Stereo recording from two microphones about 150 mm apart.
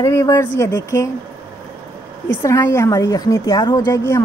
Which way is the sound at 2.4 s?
20° left (ahead or behind).